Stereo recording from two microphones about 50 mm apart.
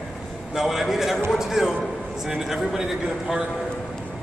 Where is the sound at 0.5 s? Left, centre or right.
Centre.